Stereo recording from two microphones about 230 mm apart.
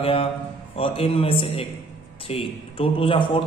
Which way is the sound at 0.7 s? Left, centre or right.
Left.